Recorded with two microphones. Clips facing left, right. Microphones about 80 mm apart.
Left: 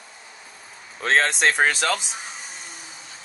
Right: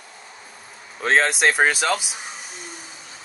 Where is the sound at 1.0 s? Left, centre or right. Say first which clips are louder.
Right 1 dB; centre.